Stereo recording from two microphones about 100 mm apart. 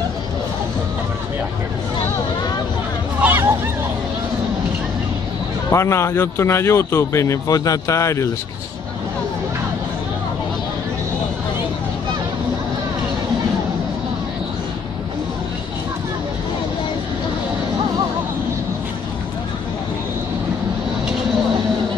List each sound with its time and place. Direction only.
3.2 s hubbub: 20° right (ahead or behind)
5.7 s speech: 30° left (ahead or behind)